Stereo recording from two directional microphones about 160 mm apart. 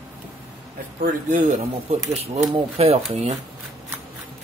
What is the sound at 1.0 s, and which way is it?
Speech, 55° right (ahead or behind).